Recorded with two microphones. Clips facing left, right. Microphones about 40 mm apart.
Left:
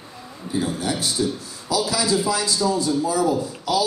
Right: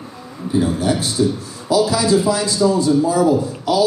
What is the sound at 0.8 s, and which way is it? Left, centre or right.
A man's voice, right.